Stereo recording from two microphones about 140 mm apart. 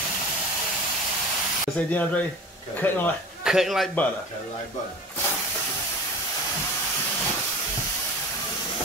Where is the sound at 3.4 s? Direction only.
5° right (ahead or behind).